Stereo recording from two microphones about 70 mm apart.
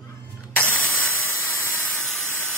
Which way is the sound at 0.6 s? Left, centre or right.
Left.